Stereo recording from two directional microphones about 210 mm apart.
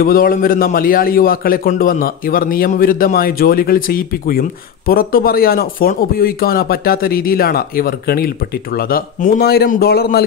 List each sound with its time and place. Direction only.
0.0 s a man's voice: 45° left (ahead or behind)